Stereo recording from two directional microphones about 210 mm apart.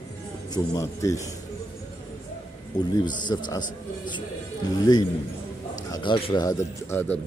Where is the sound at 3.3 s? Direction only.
20° left (ahead or behind).